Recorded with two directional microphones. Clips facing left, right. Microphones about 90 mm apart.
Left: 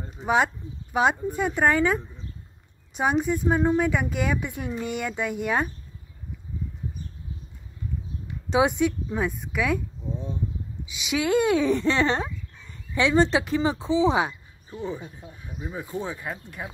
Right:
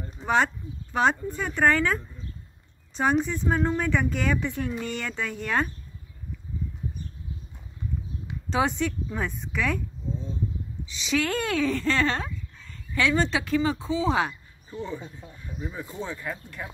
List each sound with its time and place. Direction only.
0.2 s speech: 10° left (ahead or behind)
8.5 s speech: 10° left (ahead or behind)
10.9 s speech: 10° left (ahead or behind)